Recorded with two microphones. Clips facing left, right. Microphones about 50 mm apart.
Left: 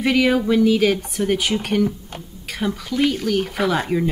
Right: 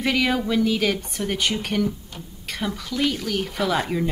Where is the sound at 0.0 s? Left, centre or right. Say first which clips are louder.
Left 5 dB; centre.